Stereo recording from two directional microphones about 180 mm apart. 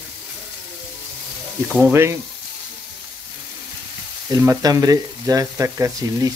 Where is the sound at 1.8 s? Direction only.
10° right (ahead or behind).